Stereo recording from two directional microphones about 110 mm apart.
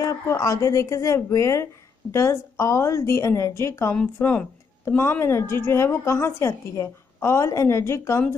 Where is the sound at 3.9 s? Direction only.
15° left (ahead or behind).